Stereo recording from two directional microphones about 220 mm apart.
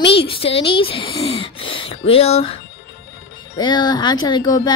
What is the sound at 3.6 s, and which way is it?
Speech, 20° left (ahead or behind).